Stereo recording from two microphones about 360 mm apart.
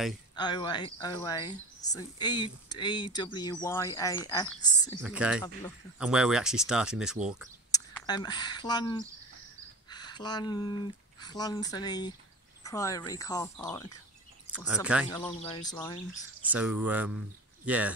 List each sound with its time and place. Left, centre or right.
0.4 s speech: centre
5.0 s speech: centre
7.7 s speech: centre
9.8 s a sound: centre
11.1 s speech: centre
14.5 s speech: centre
15.0 s speech: centre
16.1 s speech: centre